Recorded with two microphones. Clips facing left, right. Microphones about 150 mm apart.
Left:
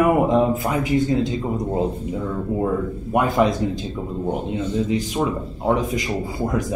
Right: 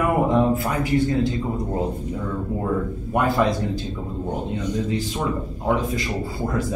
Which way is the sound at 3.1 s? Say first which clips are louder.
Left 2 dB; 20° left (ahead or behind).